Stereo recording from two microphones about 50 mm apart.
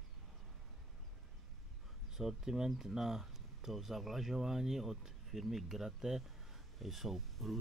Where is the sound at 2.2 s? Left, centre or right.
Centre.